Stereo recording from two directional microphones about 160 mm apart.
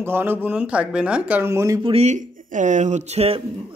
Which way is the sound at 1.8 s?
40° right (ahead or behind).